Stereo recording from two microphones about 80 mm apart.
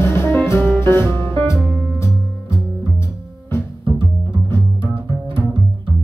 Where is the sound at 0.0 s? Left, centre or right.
Left.